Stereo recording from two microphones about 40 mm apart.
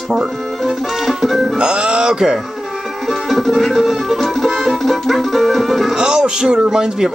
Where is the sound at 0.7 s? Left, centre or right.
Centre.